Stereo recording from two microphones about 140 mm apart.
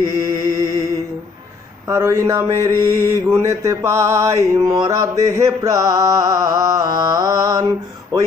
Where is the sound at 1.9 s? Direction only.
20° right (ahead or behind).